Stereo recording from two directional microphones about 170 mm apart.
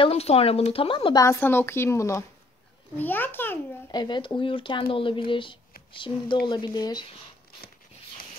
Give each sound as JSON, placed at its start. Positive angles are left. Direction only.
{"t": 0.0, "sound": "speech", "side_deg": 35}
{"t": 1.2, "sound": "a woman's voice", "side_deg": 15}
{"t": 3.9, "sound": "speech", "side_deg": 25}